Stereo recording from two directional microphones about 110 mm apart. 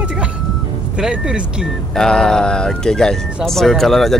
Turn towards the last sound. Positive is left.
turn(degrees=0)  # may be behind; listen again after turning